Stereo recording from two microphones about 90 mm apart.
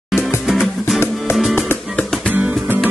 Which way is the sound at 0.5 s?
5° right (ahead or behind).